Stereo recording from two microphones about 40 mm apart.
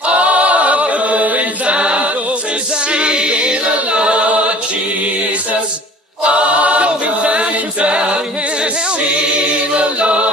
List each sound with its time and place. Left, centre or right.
0.1 s chant: right
6.2 s choir: right
9.8 s chant: right